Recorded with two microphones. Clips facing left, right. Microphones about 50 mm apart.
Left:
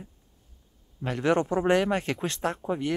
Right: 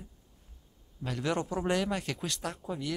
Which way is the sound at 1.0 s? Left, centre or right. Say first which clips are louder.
Left 7 dB; left.